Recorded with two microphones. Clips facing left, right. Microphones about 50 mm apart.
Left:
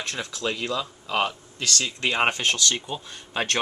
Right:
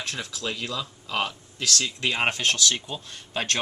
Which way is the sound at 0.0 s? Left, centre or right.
Centre.